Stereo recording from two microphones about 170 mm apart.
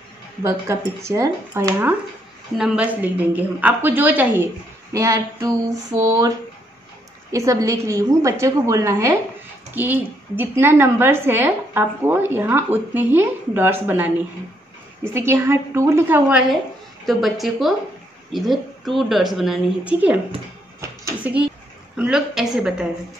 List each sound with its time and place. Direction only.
0.4 s a woman's voice: 15° right (ahead or behind)
7.3 s a woman's voice: 20° right (ahead or behind)
15.1 s a woman's voice: 15° right (ahead or behind)
20.8 s a sound: 15° right (ahead or behind)
21.9 s a woman's voice: 5° right (ahead or behind)